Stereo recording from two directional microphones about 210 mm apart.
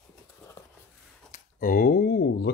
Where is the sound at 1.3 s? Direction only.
40° left (ahead or behind).